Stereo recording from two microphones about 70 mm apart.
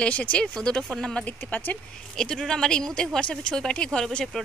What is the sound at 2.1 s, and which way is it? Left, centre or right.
Speech, centre.